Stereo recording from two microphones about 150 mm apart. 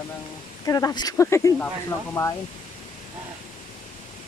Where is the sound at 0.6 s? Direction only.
25° left (ahead or behind).